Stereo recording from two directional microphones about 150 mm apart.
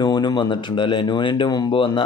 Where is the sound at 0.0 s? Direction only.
30° left (ahead or behind).